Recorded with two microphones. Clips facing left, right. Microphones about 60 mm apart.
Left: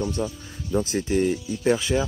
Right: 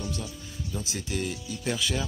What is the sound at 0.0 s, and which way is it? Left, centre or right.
Speech, left.